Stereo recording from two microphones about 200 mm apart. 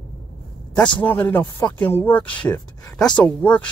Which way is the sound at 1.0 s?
10° left (ahead or behind).